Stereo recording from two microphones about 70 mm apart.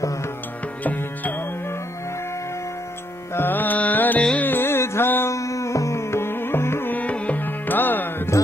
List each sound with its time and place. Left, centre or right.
3.3 s music: left
5.3 s music: left
6.9 s music: left